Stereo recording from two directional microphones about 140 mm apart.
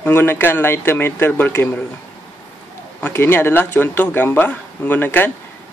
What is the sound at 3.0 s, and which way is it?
Speech, 15° left (ahead or behind).